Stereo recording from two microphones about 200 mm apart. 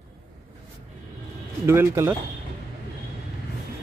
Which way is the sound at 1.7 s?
10° right (ahead or behind).